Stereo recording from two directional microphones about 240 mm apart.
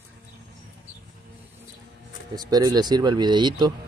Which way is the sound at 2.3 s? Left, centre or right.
Centre.